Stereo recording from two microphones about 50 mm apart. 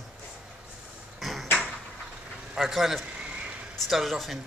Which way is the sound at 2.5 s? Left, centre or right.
Centre.